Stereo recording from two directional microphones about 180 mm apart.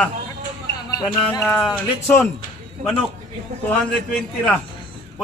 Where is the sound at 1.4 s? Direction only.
Centre (ahead or behind).